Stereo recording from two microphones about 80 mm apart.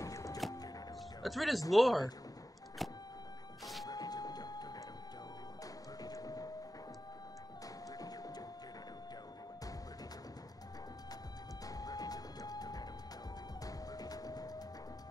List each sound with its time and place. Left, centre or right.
0.0 s music: left
1.2 s speech: centre
2.8 s vehicle: centre
3.8 s a sound: left
6.0 s vehicle: left
8.0 s printer: left
11.6 s music: left